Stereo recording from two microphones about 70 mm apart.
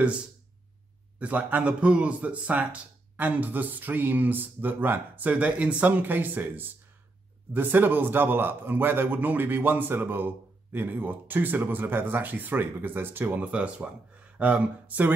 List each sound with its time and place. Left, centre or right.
1.2 s speech: right